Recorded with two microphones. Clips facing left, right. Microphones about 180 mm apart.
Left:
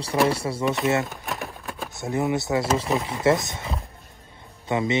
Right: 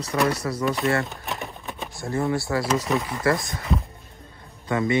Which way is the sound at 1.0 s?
Centre (ahead or behind).